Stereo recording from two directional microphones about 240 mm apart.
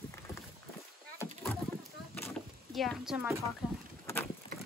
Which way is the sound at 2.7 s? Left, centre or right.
Centre.